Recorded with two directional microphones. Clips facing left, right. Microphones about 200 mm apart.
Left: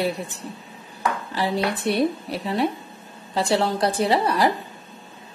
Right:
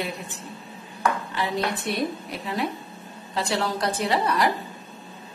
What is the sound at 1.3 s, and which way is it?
Speech, 35° left (ahead or behind).